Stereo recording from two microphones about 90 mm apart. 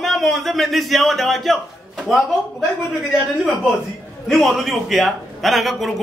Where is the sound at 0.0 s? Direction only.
Centre (ahead or behind).